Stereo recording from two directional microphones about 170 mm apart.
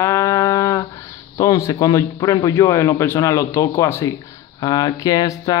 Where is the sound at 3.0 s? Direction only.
15° left (ahead or behind).